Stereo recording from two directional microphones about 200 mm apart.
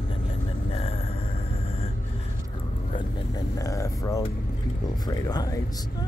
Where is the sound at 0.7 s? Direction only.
30° left (ahead or behind).